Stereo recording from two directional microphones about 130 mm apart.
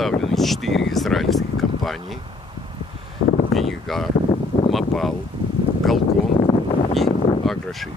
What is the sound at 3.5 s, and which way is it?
Speech, centre (ahead or behind).